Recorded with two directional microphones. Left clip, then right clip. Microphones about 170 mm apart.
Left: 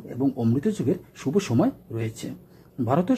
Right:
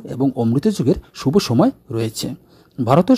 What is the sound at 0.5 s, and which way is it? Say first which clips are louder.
Speech: right 7 dB; 30° right (ahead or behind).